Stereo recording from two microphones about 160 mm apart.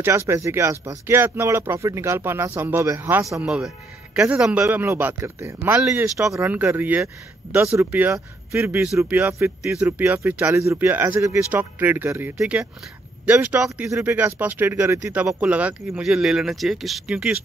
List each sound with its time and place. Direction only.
0.0 s speech: 15° right (ahead or behind)
3.3 s speech: 5° right (ahead or behind)
8.8 s speech: 5° right (ahead or behind)
9.6 s speech: 5° right (ahead or behind)